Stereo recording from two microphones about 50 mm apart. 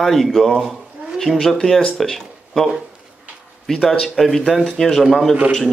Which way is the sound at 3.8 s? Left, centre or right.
Centre.